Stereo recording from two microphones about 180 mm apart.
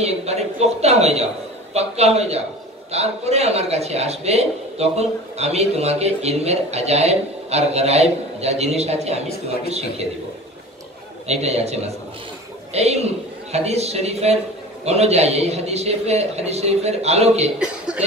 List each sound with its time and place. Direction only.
0.0 s a man's voice: 35° right (ahead or behind)
11.2 s a man's voice: 35° right (ahead or behind)
17.6 s chuckle: 5° right (ahead or behind)